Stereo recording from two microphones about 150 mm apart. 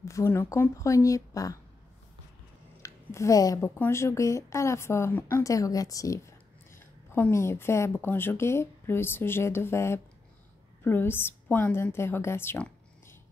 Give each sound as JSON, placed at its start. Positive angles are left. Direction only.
{"t": 0.0, "sound": "a woman's voice", "side_deg": 20}
{"t": 2.8, "sound": "a woman's voice", "side_deg": 20}